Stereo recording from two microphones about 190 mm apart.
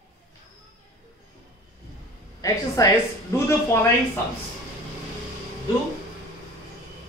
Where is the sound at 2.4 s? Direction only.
20° left (ahead or behind).